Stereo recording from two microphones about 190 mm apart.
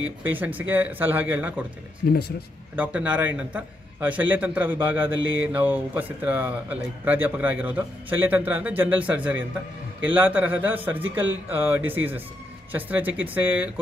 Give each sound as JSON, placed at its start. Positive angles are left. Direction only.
{"t": 0.2, "sound": "speech", "side_deg": -10}
{"t": 2.0, "sound": "speech", "side_deg": 50}
{"t": 2.7, "sound": "speech", "side_deg": -10}